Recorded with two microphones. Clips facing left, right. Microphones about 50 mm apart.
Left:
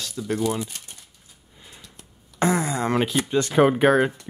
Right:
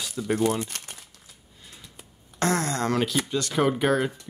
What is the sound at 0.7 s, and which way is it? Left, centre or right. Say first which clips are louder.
Speech: right 2 dB; right.